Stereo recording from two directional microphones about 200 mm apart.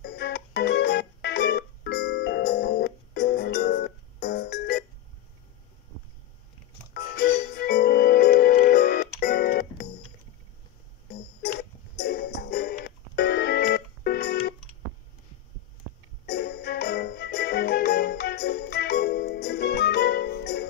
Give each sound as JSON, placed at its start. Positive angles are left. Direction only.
{"t": 0.0, "sound": "music", "side_deg": 55}
{"t": 6.9, "sound": "music", "side_deg": 55}
{"t": 12.0, "sound": "music", "side_deg": 55}
{"t": 16.3, "sound": "music", "side_deg": 55}